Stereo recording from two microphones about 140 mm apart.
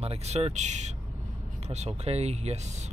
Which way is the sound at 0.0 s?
50° right (ahead or behind).